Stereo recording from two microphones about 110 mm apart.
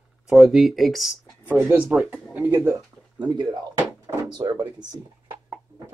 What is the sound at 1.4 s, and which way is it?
Speech, 15° right (ahead or behind).